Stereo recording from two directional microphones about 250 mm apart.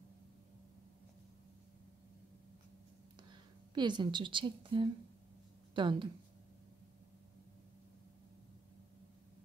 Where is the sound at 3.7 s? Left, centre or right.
Centre.